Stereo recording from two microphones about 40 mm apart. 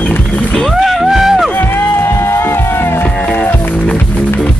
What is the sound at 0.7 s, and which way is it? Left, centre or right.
Music, centre.